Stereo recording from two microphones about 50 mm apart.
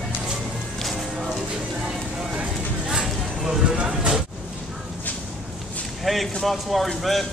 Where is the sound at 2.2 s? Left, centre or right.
Centre.